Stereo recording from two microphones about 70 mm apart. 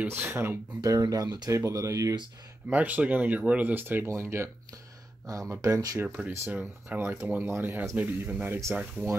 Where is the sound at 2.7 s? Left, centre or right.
Right.